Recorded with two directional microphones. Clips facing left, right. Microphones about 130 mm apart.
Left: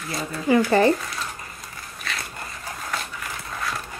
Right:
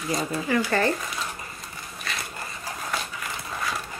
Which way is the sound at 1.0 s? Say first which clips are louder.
Even; 5° right (ahead or behind).